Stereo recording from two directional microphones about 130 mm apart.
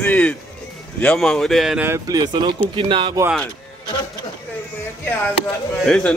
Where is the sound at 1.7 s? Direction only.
20° right (ahead or behind); by 3.1 s 40° right (ahead or behind).